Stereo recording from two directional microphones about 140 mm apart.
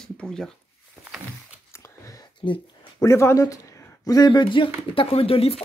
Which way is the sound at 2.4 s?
35° left (ahead or behind).